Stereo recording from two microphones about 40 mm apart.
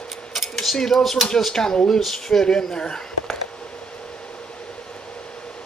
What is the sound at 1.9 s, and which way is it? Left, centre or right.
Speech, centre.